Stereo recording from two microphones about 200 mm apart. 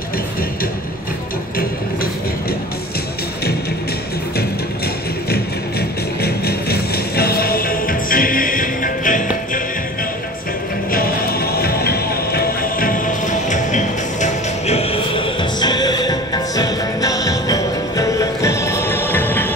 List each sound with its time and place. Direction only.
5.3 s music: 50° left (ahead or behind)
10.9 s music: 45° left (ahead or behind); by 19.4 s 10° left (ahead or behind)